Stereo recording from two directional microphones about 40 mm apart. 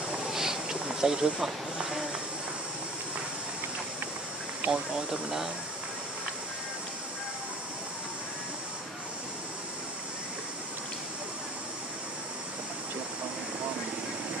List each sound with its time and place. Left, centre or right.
0.3 s snake: centre
4.6 s speech: centre